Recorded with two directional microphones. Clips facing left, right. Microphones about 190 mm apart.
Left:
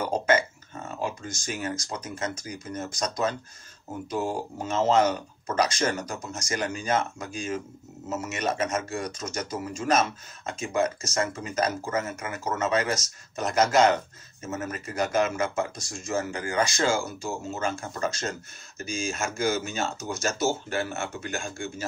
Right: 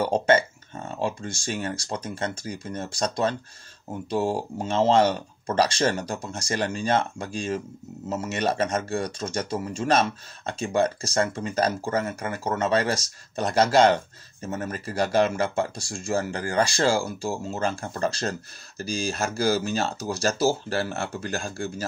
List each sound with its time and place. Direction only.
0.0 s speech: 30° right (ahead or behind)